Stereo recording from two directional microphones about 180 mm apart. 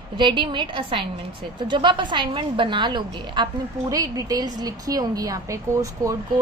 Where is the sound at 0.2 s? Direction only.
25° right (ahead or behind).